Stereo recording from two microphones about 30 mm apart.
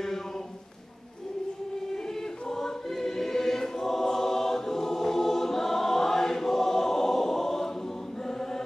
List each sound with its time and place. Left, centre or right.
2.5 s choir: centre